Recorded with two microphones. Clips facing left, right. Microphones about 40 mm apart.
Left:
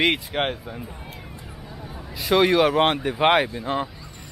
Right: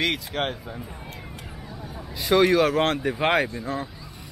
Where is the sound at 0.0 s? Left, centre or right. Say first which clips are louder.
Left 4 dB; left.